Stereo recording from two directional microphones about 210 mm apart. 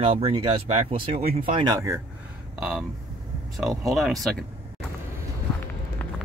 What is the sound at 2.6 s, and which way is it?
Speech, centre (ahead or behind).